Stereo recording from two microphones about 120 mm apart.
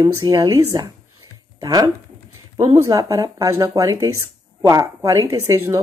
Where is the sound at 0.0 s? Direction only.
35° right (ahead or behind).